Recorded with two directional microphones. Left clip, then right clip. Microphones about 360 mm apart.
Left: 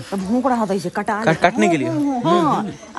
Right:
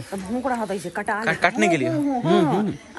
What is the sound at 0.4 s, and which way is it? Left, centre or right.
Speech, left.